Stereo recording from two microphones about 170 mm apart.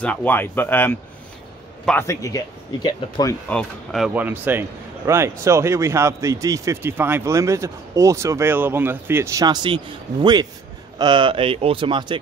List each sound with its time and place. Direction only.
0.0 s speech: 10° left (ahead or behind)
3.4 s speech: 5° left (ahead or behind)
4.1 s a man's voice: 10° right (ahead or behind); by 9.8 s 25° right (ahead or behind)
11.0 s speech: 25° right (ahead or behind)